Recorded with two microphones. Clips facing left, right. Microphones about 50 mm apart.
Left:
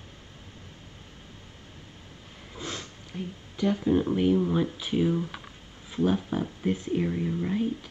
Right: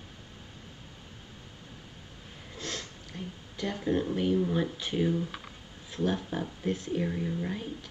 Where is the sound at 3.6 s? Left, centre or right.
Centre.